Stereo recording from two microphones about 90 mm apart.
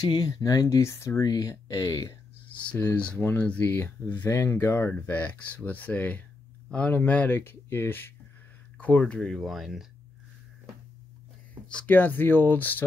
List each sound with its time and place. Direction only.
0.0 s speech: 50° left (ahead or behind); by 1.3 s 35° left (ahead or behind)
1.3 s speech: 45° left (ahead or behind)
2.7 s speech: 15° left (ahead or behind); by 9.8 s 5° right (ahead or behind)
11.8 s speech: 20° left (ahead or behind)